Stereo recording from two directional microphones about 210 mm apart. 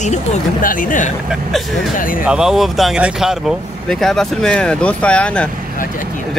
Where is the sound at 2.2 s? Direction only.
5° right (ahead or behind).